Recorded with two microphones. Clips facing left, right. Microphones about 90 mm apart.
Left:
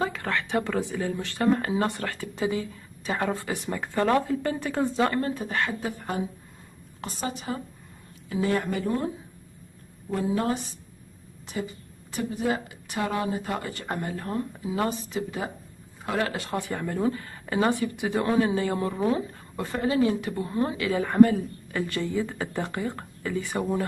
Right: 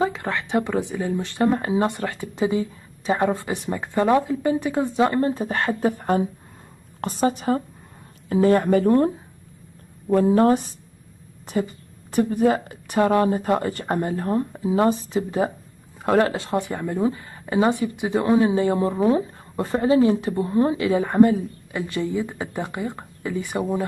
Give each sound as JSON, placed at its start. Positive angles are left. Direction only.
{"t": 0.0, "sound": "a woman's voice", "side_deg": -20}